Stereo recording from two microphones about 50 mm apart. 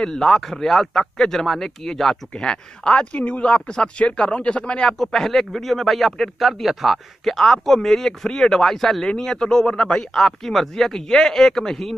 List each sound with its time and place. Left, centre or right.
0.0 s speech: centre
4.9 s speech: centre